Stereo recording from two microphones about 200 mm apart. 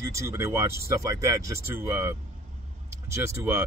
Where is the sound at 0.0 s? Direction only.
15° right (ahead or behind).